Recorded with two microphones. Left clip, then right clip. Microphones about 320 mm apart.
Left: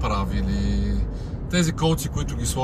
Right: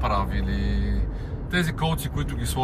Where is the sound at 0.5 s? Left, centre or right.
Centre.